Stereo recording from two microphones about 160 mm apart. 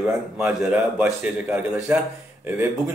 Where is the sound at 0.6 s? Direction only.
5° right (ahead or behind).